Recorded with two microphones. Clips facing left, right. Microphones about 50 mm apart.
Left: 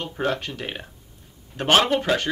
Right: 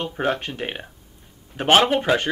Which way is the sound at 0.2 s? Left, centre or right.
Right.